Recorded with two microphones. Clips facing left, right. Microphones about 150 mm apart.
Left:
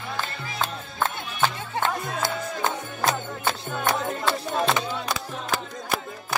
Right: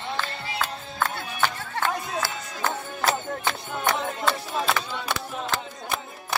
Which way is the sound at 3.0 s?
20° right (ahead or behind).